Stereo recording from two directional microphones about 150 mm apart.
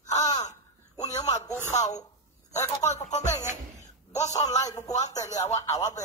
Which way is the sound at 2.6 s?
20° left (ahead or behind).